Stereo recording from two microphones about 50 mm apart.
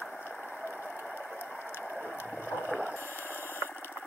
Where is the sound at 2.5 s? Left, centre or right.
Left.